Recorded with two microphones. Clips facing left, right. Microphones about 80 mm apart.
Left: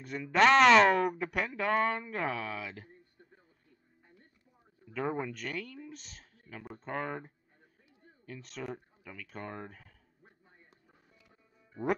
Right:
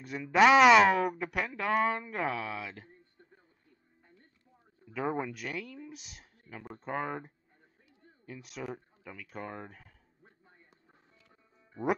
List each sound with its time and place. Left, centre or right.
0.0 s speech: centre
4.9 s speech: centre
8.7 s speech: centre
9.3 s speech: centre